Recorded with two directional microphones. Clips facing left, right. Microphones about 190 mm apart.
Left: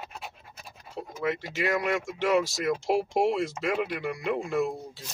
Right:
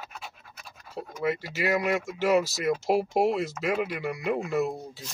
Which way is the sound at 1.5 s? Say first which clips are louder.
Right 1 dB; 5° right (ahead or behind).